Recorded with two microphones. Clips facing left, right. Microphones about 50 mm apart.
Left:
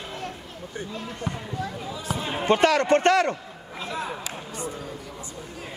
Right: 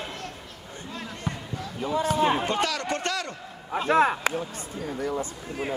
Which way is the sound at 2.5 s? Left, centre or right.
Left.